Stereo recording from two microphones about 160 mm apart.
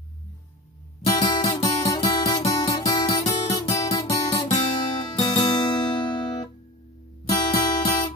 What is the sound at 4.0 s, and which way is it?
Guitar, 20° left (ahead or behind).